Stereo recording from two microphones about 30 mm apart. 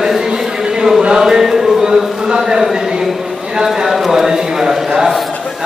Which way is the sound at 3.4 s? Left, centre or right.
Right.